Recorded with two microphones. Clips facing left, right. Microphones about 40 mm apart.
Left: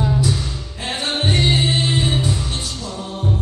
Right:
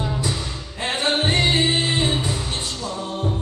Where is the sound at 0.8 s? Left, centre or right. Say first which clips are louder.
Right 1 dB; centre.